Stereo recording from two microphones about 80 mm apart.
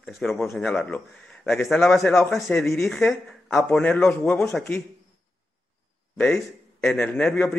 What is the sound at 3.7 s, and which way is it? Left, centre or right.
Speech, centre.